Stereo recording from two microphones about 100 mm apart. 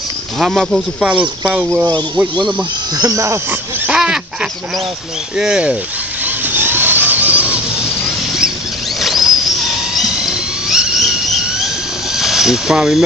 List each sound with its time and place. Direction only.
0.4 s speech: centre (ahead or behind)
1.0 s speech: 15° right (ahead or behind)
3.0 s speech: 35° right (ahead or behind)
3.8 s pig: 10° right (ahead or behind)
5.4 s speech: 10° right (ahead or behind)
6.2 s squeal: 20° right (ahead or behind)
9.0 s a sound: centre (ahead or behind)
12.2 s speech: 5° right (ahead or behind)